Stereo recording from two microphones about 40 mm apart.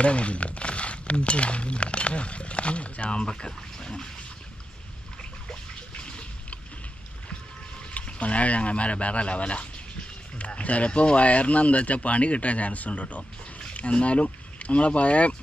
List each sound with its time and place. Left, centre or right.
0.0 s speech: left
5.9 s a sound: left
7.9 s speech: left